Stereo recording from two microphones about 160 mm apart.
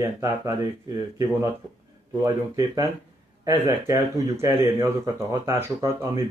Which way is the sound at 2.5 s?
20° right (ahead or behind).